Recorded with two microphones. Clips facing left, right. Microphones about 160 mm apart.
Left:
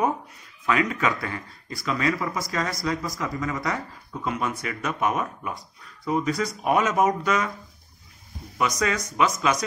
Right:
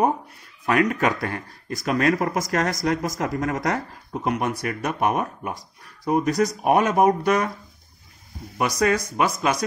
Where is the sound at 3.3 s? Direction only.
55° right (ahead or behind).